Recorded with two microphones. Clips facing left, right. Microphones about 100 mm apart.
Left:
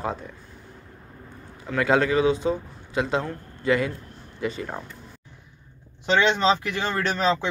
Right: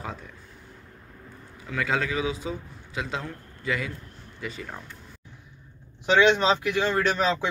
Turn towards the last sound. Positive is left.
turn(degrees=-10)  # may be behind; listen again after turning